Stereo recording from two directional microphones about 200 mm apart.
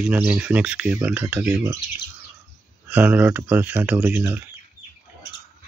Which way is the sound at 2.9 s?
10° right (ahead or behind).